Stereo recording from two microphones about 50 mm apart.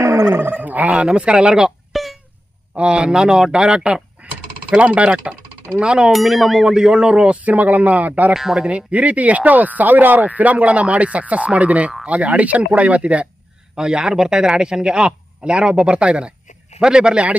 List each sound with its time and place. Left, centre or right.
0.0 s a sound: right
0.4 s speech: right; by 1.7 s centre
1.9 s a sound: centre
2.7 s a man's voice: right
4.2 s a sound: right
5.8 s speech: centre
6.1 s a man's voice: centre
7.4 s speech: right
8.4 s a man's voice: centre
8.6 s speech: right
13.7 s a man's voice: centre